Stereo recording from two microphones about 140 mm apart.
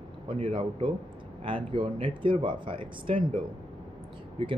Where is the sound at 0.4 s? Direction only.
40° right (ahead or behind).